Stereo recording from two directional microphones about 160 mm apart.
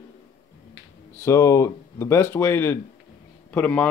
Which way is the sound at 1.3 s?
20° left (ahead or behind).